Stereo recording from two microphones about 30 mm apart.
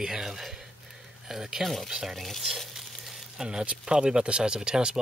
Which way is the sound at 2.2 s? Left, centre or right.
Centre.